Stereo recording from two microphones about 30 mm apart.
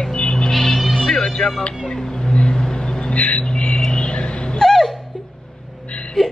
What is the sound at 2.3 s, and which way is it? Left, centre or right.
Vehicle, left.